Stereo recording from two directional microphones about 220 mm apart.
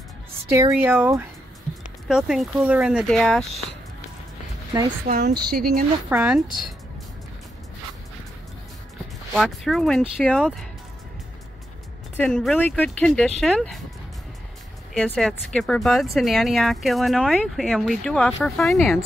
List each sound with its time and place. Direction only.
0.5 s speech: 10° right (ahead or behind)
5.1 s speech: 30° right (ahead or behind)
5.5 s speech: 40° right (ahead or behind)
6.0 s speech: 5° right (ahead or behind)
9.3 s speech: centre (ahead or behind)
12.2 s speech: 5° left (ahead or behind)
15.0 s speech: 5° left (ahead or behind)